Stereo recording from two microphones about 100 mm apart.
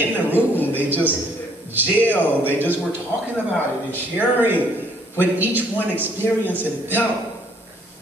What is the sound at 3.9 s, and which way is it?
A man's voice, 20° right (ahead or behind).